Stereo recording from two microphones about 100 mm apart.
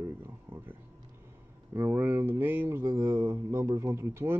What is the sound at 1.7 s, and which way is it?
Speech, 20° right (ahead or behind).